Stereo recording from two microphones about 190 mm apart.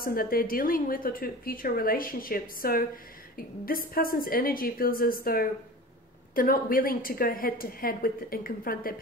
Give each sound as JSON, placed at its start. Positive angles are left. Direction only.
{"t": 0.0, "sound": "a woman's voice", "side_deg": 50}